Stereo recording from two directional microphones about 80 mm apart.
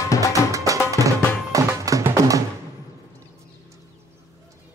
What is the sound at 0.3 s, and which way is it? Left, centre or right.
Music, right.